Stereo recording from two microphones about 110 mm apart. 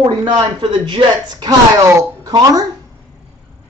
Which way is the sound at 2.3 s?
35° right (ahead or behind).